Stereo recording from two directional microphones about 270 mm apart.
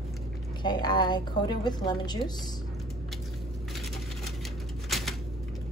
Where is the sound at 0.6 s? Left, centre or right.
Centre.